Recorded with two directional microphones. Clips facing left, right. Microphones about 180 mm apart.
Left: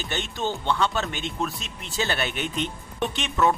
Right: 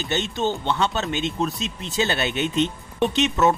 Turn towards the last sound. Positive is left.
turn(degrees=-20)  # may be behind; listen again after turning